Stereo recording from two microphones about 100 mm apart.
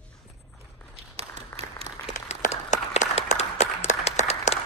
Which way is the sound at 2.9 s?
90° left.